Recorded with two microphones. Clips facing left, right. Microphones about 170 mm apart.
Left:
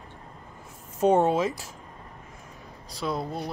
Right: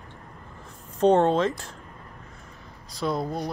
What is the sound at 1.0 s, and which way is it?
Speech, 10° left (ahead or behind).